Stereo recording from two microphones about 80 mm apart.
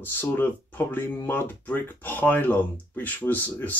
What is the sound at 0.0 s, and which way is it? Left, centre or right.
Speech, left.